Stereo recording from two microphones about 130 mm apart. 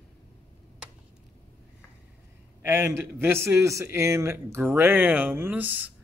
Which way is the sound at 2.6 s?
20° right (ahead or behind).